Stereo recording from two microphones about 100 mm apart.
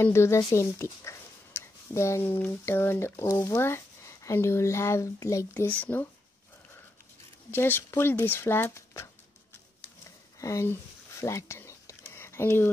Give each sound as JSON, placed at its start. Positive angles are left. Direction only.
{"t": 0.0, "sound": "speech", "side_deg": 25}
{"t": 5.7, "sound": "speech", "side_deg": 15}
{"t": 7.5, "sound": "speech", "side_deg": 20}
{"t": 10.4, "sound": "whispering", "side_deg": 30}